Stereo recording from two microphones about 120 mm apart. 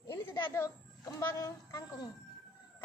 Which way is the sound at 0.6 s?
25° left (ahead or behind).